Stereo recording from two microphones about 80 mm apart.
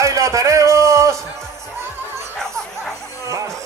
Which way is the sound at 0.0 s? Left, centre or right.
Right.